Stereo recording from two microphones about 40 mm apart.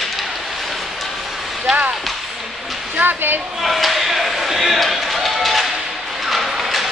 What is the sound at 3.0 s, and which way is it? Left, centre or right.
Speech, right.